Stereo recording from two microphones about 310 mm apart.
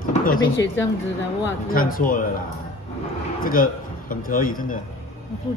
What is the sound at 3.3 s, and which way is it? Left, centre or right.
A man's voice, left.